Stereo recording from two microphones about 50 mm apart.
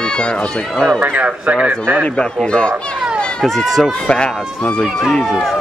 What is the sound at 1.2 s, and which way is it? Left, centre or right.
Speech, right.